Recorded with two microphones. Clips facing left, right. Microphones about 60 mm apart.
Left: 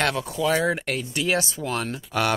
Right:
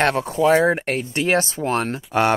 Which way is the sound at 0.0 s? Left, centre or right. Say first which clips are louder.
Right 6 dB; right.